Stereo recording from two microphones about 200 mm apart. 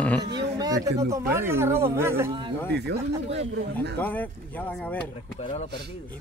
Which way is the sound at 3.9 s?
10° left (ahead or behind).